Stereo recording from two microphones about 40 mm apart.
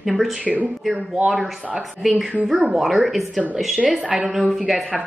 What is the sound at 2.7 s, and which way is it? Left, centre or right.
Speech, centre.